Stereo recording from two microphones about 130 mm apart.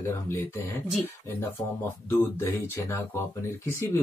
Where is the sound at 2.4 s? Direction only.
20° left (ahead or behind).